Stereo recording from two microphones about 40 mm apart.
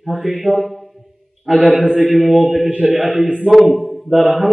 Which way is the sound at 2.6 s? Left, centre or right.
Right.